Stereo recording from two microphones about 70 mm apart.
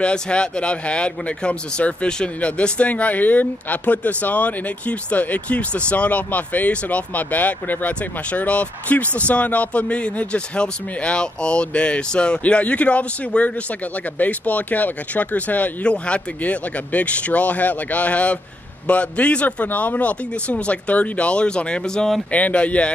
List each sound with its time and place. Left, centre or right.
0.0 s speech: centre